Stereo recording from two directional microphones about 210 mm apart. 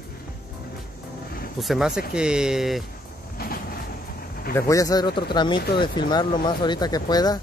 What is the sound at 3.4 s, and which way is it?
Train, 45° left (ahead or behind).